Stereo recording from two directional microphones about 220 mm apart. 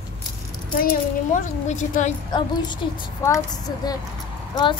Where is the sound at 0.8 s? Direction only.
35° left (ahead or behind).